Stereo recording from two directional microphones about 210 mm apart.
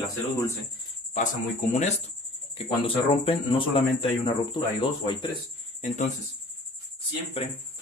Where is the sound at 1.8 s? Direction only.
30° left (ahead or behind).